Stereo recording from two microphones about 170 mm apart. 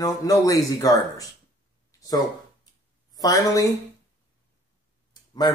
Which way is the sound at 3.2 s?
20° left (ahead or behind).